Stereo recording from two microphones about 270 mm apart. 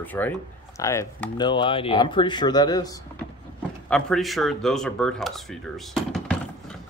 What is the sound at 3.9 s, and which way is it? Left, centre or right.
Speech, centre.